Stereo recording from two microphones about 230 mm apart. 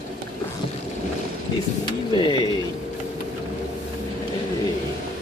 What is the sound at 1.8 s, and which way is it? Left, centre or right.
Speech, centre.